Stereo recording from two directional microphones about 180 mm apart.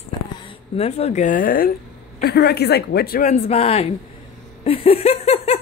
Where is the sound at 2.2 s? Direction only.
65° left (ahead or behind).